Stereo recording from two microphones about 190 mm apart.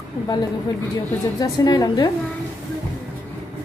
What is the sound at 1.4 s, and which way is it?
Speech, 20° left (ahead or behind).